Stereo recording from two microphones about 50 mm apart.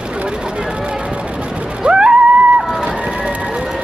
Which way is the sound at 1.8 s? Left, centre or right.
Centre.